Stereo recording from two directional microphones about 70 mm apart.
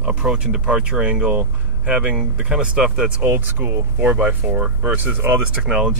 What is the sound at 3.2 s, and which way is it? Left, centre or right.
Speech, right.